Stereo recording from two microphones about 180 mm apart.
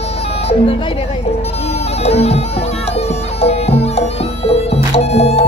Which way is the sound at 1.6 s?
35° left (ahead or behind).